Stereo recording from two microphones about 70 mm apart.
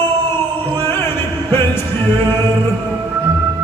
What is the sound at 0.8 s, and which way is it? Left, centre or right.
Music, left.